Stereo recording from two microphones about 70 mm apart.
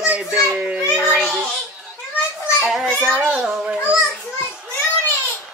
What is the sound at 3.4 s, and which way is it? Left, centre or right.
Speech, centre.